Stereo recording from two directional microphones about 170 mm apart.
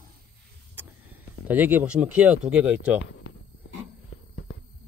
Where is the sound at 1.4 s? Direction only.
10° right (ahead or behind).